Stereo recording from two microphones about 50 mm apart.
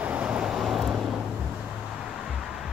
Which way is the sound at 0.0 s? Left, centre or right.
Right.